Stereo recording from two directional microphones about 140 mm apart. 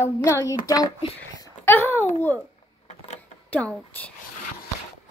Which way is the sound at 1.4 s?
15° left (ahead or behind).